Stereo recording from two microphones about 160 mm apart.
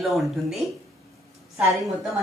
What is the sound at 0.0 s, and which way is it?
Speech, centre (ahead or behind).